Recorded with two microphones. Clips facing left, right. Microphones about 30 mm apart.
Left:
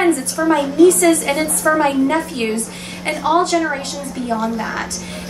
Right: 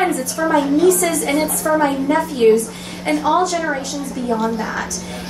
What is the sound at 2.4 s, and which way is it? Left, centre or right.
Speech, left.